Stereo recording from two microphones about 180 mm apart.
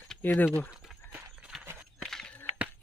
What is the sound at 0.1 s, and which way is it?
Speech, 10° left (ahead or behind).